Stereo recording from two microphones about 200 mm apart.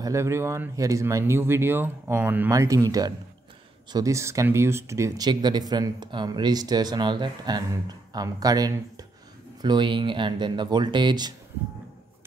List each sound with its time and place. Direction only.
0.0 s speech: 15° right (ahead or behind)